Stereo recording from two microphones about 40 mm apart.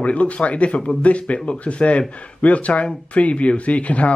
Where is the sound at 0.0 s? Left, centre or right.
Left.